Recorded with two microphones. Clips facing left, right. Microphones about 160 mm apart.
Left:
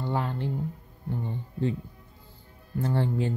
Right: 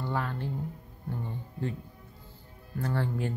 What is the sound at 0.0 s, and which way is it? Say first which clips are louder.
Speech: left 3 dB; 20° left (ahead or behind).